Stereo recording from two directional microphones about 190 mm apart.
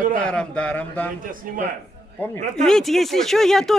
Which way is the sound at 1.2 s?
45° right (ahead or behind).